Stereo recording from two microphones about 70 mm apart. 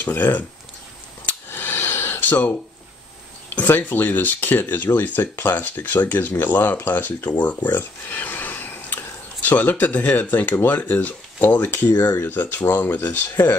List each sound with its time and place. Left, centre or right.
0.0 s speech: left
1.2 s a sound: left
3.6 s speech: left